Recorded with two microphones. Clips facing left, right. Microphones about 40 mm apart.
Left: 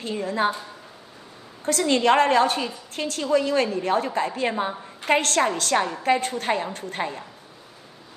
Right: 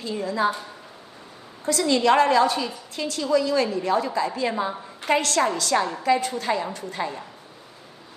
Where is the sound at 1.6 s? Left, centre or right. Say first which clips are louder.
Even; left.